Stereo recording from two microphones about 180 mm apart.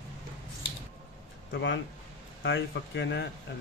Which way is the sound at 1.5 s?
90° left.